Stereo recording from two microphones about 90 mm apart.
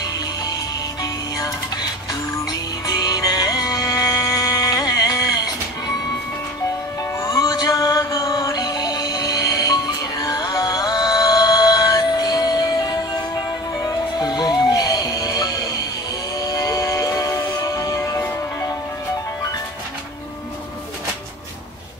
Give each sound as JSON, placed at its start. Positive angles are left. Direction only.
{"t": 1.0, "sound": "music", "side_deg": 45}
{"t": 2.9, "sound": "music", "side_deg": 45}
{"t": 7.2, "sound": "music", "side_deg": 45}